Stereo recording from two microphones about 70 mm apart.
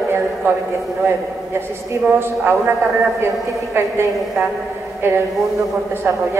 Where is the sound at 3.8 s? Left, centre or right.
Right.